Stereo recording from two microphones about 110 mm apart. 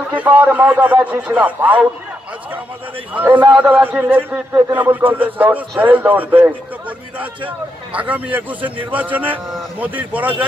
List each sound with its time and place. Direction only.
0.1 s a man's voice: 15° right (ahead or behind)
3.2 s a man's voice: 15° right (ahead or behind)